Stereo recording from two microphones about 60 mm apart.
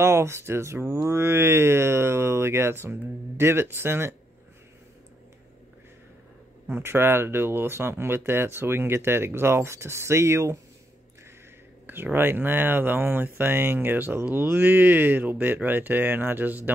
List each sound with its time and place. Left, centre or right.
0.0 s speech: right
6.7 s speech: right
11.8 s speech: right